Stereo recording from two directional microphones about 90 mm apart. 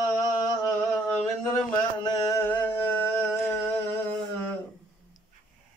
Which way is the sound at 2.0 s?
40° left (ahead or behind).